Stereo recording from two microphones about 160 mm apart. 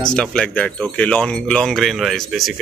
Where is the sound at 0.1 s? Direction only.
5° left (ahead or behind).